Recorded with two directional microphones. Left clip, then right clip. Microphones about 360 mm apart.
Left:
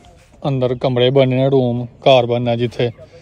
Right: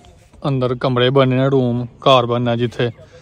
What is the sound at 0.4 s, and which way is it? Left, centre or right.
A man's voice, centre.